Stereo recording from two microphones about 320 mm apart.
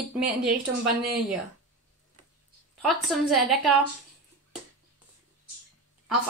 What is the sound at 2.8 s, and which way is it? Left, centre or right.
Speech, centre.